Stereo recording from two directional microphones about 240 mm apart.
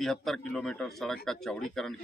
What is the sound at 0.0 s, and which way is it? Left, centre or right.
Speech, centre.